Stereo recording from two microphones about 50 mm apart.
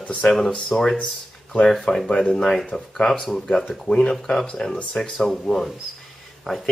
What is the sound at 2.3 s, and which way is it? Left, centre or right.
Speech, centre.